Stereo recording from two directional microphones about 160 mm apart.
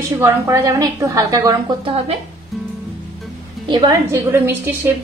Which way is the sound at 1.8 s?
35° right (ahead or behind).